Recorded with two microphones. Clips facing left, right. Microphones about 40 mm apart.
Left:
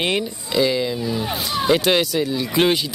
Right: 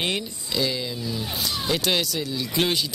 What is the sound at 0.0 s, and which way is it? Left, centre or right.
Speech, left.